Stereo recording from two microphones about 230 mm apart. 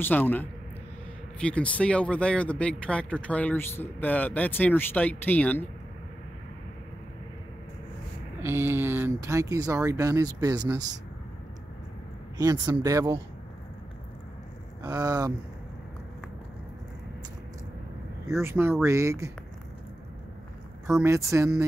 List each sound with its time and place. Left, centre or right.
0.0 s speech: centre
8.4 s speech: centre
12.4 s speech: centre
14.8 s speech: centre
18.2 s speech: centre
20.8 s speech: centre